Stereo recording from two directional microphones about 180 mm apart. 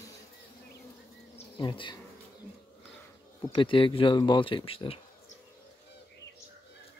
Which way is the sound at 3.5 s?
30° left (ahead or behind).